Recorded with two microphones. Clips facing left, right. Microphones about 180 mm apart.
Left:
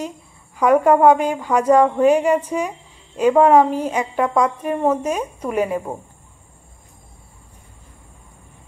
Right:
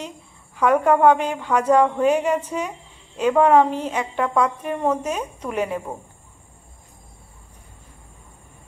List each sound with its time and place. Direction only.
0.6 s a woman's voice: 10° left (ahead or behind)